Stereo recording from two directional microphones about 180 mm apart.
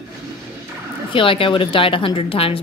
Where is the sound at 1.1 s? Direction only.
30° left (ahead or behind).